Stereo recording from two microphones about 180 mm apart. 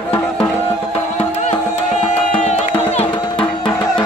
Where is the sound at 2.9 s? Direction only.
25° left (ahead or behind).